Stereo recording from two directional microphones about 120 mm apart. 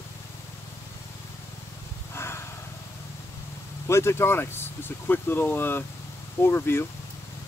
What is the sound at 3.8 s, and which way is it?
Speech, 20° left (ahead or behind).